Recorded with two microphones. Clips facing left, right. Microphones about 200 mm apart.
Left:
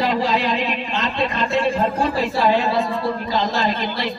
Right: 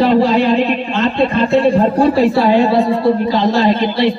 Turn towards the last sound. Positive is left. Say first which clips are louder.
# right 10 dB
turn(degrees=-30)  # may be behind; listen again after turning